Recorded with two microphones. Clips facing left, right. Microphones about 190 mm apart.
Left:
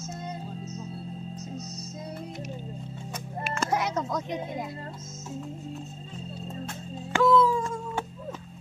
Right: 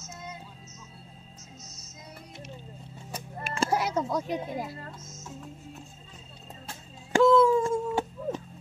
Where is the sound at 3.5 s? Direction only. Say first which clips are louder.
Right 1 dB; 30° right (ahead or behind).